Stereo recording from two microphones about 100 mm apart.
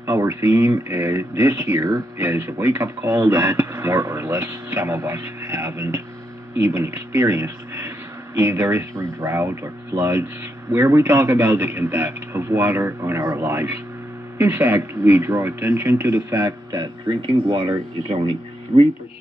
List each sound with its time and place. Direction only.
0.0 s speech: 25° right (ahead or behind)
17.4 s speech: 65° right (ahead or behind)
18.7 s speech: 85° right